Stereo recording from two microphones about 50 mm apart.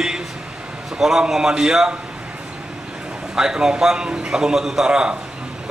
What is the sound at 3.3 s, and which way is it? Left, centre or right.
Speech, centre.